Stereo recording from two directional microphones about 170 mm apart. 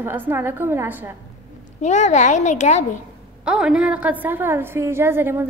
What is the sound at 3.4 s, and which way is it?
A woman's voice, 5° right (ahead or behind).